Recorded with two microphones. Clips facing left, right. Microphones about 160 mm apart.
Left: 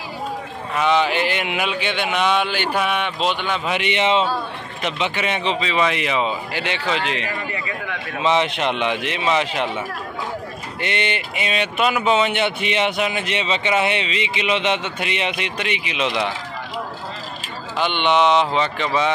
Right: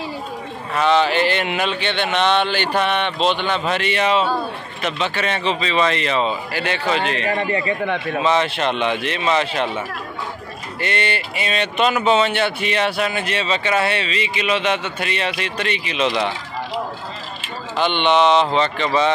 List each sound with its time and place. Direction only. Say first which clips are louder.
0.7 s speech: right 2 dB; 10° left (ahead or behind)
7.3 s a man's voice: right 7 dB; 35° right (ahead or behind)
8.2 s speech: left 1 dB; 20° left (ahead or behind)
17.7 s speech: right 2 dB; 10° left (ahead or behind)